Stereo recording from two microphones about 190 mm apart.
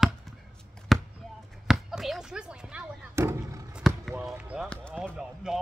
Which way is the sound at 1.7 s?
Centre (ahead or behind).